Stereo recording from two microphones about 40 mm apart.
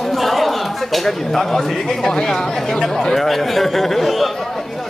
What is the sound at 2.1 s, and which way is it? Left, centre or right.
Speech, centre.